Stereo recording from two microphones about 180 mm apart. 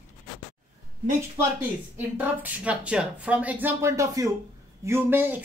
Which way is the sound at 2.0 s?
10° right (ahead or behind).